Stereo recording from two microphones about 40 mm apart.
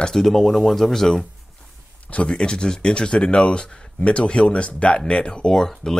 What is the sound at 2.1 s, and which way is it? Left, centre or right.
Speech, left.